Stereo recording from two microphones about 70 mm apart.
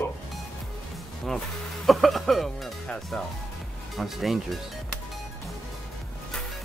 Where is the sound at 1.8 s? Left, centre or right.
Centre.